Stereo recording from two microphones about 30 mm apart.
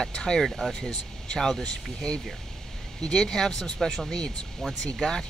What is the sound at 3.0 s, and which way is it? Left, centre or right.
Speech, left.